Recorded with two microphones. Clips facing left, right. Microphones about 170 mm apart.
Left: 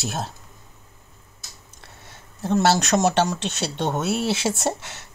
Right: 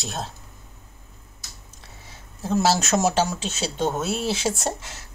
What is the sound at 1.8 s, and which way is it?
Speech, centre (ahead or behind).